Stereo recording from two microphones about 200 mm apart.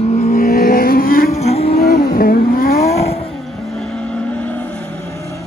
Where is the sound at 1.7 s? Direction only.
50° left (ahead or behind).